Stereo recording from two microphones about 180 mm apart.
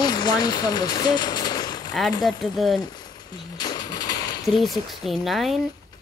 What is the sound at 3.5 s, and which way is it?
Vehicle, 20° left (ahead or behind).